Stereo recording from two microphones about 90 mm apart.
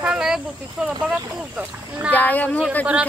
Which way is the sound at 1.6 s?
20° right (ahead or behind).